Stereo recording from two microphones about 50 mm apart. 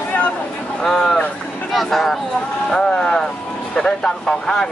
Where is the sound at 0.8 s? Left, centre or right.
Centre.